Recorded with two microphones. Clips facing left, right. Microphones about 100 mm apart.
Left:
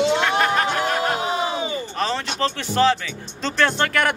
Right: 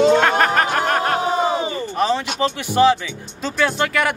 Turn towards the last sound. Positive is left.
turn(degrees=-5)  # may be behind; listen again after turning